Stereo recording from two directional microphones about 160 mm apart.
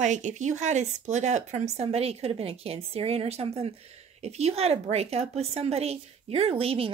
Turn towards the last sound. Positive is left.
turn(degrees=-35)  # may be behind; listen again after turning